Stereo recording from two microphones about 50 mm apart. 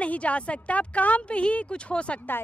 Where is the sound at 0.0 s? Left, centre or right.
Left.